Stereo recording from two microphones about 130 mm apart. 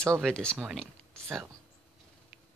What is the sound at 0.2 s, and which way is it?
Speech, 5° left (ahead or behind).